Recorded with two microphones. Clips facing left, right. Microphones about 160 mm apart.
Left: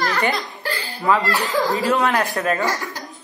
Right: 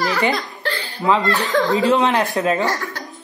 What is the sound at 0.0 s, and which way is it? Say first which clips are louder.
Giggle: right 2 dB; centre (ahead or behind).